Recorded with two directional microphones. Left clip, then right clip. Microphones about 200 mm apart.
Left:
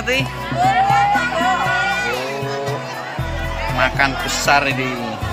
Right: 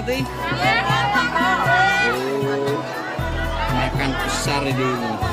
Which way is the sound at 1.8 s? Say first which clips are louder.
Right 2 dB; 35° right (ahead or behind).